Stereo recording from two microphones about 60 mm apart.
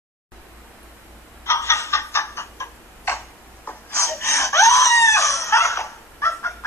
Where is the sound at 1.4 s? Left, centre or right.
Left.